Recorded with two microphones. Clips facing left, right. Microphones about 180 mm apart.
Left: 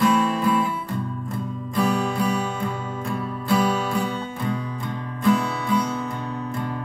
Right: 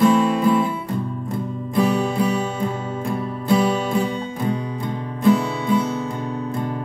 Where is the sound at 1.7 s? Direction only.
25° right (ahead or behind).